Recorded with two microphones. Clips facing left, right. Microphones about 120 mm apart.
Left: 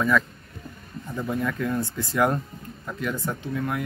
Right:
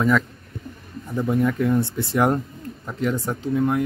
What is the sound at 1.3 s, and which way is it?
Speech, 20° right (ahead or behind).